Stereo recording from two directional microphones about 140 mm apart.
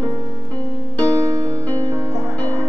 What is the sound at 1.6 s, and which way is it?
Music, 15° left (ahead or behind).